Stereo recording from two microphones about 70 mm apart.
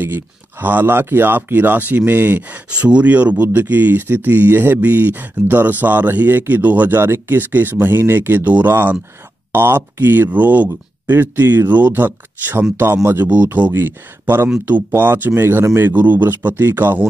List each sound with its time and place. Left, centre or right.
0.0 s speech: right
2.7 s speech: centre; by 13.3 s right
13.3 s speech: right